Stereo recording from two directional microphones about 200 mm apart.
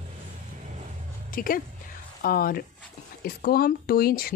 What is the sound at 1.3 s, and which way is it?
A woman's voice, 45° left (ahead or behind).